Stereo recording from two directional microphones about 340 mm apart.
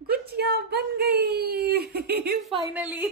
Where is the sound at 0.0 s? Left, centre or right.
Right.